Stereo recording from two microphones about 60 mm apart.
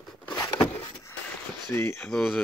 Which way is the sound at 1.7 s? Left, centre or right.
Left.